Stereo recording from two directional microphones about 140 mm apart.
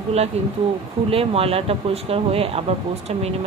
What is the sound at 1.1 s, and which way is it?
Speech, 45° right (ahead or behind).